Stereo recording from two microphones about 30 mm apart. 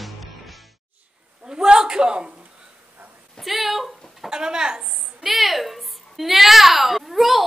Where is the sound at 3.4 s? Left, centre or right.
Centre.